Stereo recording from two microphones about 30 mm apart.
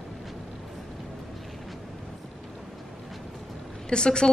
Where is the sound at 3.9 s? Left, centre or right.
Left.